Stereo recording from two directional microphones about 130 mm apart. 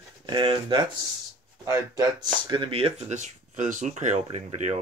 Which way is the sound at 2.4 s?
40° right (ahead or behind).